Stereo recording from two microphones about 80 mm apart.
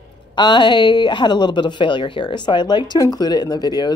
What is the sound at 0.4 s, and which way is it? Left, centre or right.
Speech, left.